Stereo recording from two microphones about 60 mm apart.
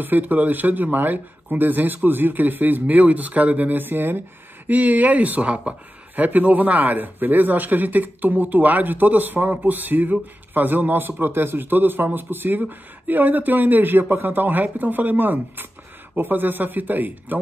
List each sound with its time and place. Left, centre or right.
0.0 s speech: right